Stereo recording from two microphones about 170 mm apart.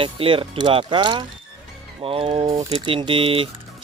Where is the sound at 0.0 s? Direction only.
30° right (ahead or behind).